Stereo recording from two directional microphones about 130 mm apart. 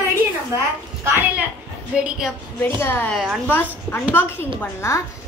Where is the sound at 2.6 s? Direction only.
15° left (ahead or behind).